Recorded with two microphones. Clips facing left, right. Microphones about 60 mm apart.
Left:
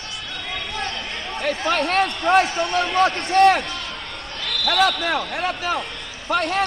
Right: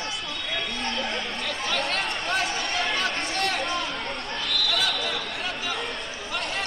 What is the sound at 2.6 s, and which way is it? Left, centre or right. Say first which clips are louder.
A man's voice: left 8 dB; left.